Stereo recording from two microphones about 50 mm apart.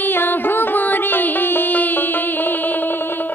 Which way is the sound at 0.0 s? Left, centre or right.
Left.